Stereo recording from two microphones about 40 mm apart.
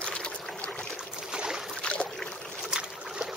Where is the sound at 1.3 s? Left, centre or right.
Centre.